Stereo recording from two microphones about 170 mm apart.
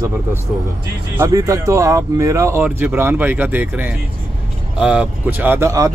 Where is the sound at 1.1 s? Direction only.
20° right (ahead or behind).